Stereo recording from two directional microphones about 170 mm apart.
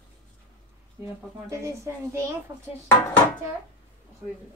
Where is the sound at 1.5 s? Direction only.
15° right (ahead or behind).